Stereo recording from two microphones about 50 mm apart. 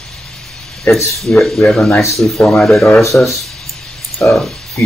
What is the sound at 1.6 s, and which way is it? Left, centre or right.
Speech, centre.